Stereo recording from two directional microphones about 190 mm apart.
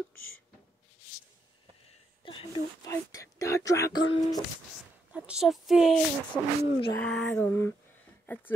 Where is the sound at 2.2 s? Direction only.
25° left (ahead or behind).